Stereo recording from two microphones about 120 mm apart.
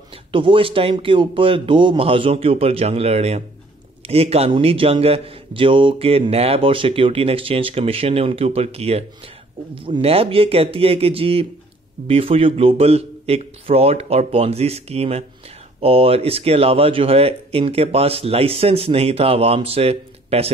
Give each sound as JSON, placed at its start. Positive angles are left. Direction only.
{"t": 0.3, "sound": "speech", "side_deg": -45}
{"t": 9.8, "sound": "speech", "side_deg": -45}